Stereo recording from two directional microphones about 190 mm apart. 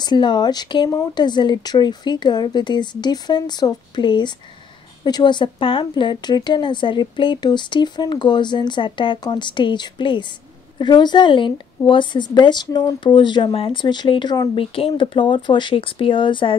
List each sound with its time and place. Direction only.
0.0 s a woman's voice: 25° left (ahead or behind)